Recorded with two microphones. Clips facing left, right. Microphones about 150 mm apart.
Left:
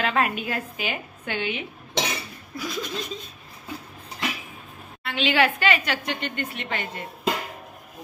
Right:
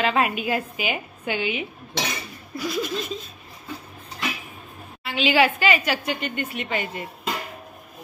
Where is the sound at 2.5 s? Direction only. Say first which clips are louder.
Right 4 dB; 5° right (ahead or behind).